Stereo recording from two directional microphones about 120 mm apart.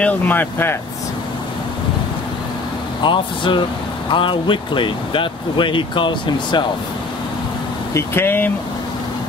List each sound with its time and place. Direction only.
0.0 s speech: 15° left (ahead or behind)
3.0 s speech: 40° left (ahead or behind)
7.9 s speech: 20° left (ahead or behind)